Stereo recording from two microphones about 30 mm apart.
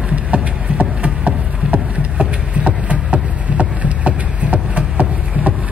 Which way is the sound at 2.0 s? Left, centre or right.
Right.